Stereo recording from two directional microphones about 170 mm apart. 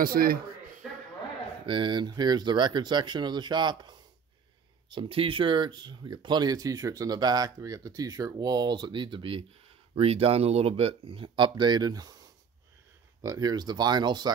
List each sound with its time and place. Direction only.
0.0 s speech: 60° right (ahead or behind)
1.7 s speech: 30° right (ahead or behind)